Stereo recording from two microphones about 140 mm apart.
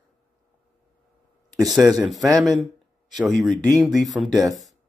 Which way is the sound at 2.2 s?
25° right (ahead or behind).